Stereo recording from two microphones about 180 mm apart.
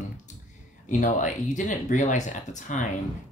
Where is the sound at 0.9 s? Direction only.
45° left (ahead or behind).